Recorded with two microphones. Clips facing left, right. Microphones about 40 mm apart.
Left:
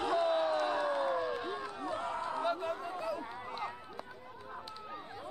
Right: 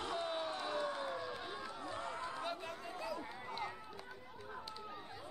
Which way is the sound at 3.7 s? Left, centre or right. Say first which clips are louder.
Left 4 dB; centre.